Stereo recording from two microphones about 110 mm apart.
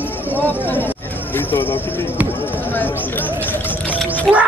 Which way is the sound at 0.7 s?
20° left (ahead or behind).